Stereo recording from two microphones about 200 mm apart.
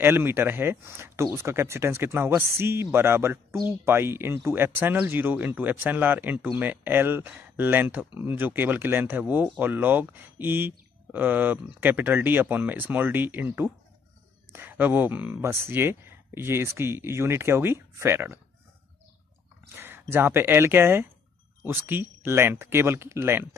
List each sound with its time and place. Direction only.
0.0 s speech: 10° right (ahead or behind)
19.7 s speech: 10° right (ahead or behind)